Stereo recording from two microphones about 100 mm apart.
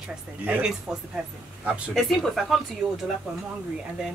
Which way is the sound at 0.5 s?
10° right (ahead or behind).